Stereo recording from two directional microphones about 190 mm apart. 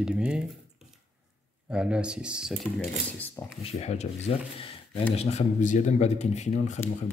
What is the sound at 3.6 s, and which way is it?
Speech, 35° left (ahead or behind).